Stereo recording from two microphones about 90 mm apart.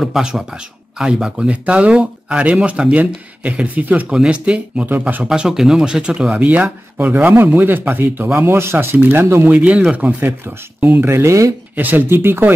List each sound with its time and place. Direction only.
0.0 s speech: 5° right (ahead or behind); by 11.5 s 35° right (ahead or behind)
11.7 s speech: 20° right (ahead or behind)